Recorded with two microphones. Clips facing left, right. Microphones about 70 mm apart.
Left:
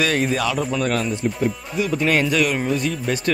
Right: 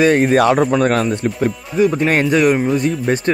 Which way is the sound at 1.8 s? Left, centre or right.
Right.